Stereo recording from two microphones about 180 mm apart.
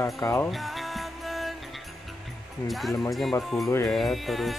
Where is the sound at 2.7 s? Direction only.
Centre (ahead or behind).